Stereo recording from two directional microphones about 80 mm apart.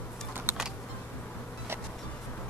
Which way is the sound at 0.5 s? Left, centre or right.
Right.